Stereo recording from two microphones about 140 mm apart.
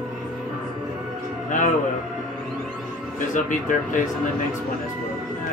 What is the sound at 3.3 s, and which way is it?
Speech, 70° left (ahead or behind).